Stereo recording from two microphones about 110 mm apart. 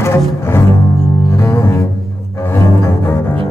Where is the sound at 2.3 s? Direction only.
25° left (ahead or behind).